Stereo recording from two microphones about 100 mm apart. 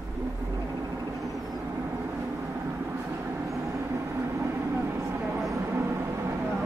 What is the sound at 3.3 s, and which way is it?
Vehicle, 25° right (ahead or behind).